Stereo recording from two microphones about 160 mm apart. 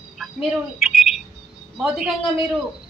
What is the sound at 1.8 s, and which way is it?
Speech, 5° right (ahead or behind).